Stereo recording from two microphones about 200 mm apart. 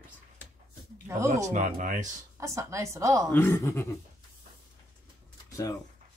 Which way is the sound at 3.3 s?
10° left (ahead or behind).